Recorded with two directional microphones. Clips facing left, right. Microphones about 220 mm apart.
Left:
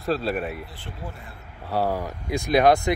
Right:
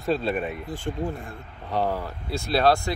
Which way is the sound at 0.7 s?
45° right (ahead or behind).